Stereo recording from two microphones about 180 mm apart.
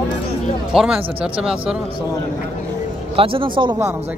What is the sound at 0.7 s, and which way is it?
Speech, 5° right (ahead or behind).